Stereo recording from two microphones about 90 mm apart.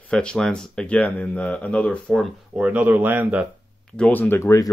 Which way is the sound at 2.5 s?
15° right (ahead or behind).